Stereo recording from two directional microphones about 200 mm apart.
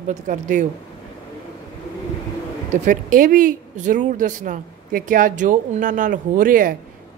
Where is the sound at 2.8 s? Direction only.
40° right (ahead or behind).